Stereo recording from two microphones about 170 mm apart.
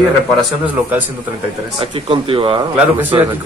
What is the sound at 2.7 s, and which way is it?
Speech, 10° right (ahead or behind).